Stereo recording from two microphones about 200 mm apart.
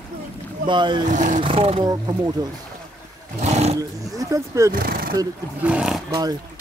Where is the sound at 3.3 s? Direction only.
35° right (ahead or behind).